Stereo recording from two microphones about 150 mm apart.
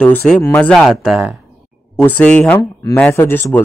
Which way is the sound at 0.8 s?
Centre (ahead or behind).